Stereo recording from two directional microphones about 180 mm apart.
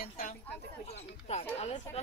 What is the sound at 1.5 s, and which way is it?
Speech, 35° left (ahead or behind).